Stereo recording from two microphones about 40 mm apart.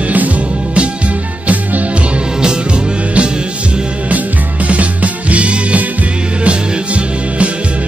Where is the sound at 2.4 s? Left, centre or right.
Centre.